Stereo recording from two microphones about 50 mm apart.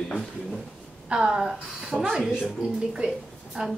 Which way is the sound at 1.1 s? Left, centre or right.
Centre.